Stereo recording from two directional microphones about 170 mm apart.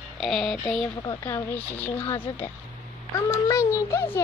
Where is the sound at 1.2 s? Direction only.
10° left (ahead or behind).